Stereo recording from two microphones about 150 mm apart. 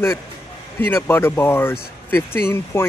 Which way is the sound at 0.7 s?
15° left (ahead or behind).